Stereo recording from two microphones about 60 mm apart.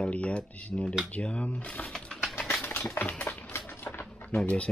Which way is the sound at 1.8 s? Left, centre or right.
Centre.